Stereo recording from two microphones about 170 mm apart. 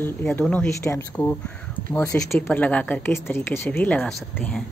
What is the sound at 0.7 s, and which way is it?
A woman's voice, 15° left (ahead or behind).